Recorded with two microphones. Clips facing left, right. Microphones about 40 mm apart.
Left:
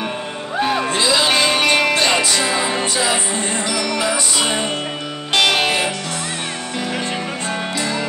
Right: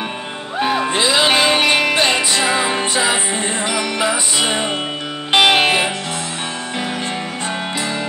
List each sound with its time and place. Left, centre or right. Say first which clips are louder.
0.6 s music: right 1 dB; centre